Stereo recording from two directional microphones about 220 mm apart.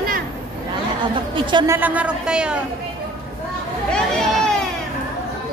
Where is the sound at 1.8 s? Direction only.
5° right (ahead or behind).